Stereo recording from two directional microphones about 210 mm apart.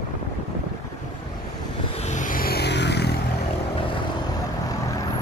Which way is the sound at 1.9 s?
35° left (ahead or behind).